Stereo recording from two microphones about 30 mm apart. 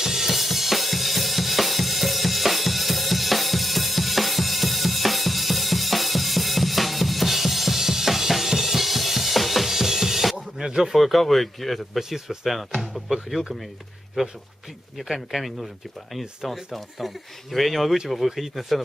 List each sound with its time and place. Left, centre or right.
0.0 s drum kit: centre
10.6 s a sound: right
10.9 s speech: centre
12.0 s speech: centre
14.2 s speech: right
15.0 s speech: centre